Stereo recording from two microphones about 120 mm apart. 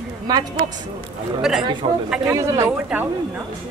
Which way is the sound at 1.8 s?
45° right (ahead or behind).